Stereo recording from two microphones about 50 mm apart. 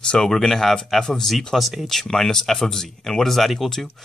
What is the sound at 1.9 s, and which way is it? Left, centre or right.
Speech, centre.